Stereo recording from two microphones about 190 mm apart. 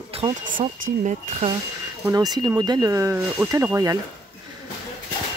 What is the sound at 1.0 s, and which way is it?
Speech, 40° right (ahead or behind).